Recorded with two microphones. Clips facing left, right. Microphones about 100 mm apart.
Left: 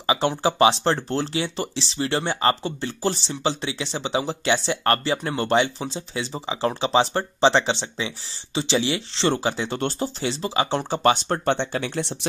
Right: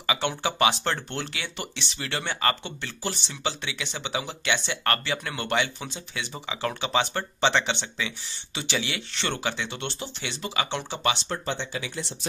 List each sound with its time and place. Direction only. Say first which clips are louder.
0.0 s speech: left 6 dB; 30° left (ahead or behind)
10.8 s speech: left 8 dB; 45° left (ahead or behind); by 12.3 s 65° left (ahead or behind)